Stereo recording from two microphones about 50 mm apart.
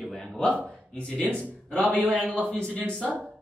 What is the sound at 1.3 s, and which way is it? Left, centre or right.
Speech, left.